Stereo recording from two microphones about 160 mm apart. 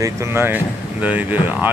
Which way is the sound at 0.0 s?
15° right (ahead or behind).